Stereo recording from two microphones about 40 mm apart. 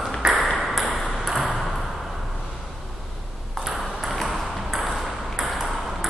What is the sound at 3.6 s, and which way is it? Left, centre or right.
Ping, centre.